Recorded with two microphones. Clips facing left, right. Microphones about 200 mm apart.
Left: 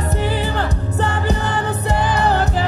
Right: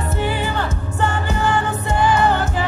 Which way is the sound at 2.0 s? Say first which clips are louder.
Right 3 dB; 35° left (ahead or behind).